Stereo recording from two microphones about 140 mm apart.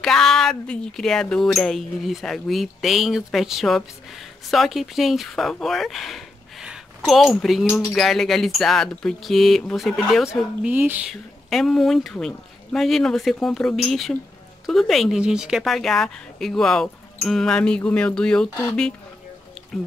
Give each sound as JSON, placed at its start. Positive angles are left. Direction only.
{"t": 0.0, "sound": "speech", "side_deg": 5}
{"t": 11.1, "sound": "speech", "side_deg": 0}